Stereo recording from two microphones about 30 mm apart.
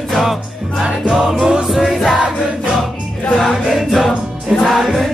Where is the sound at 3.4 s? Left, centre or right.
Centre.